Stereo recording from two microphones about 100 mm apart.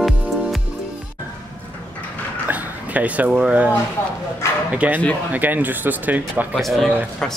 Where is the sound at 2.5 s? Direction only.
15° right (ahead or behind).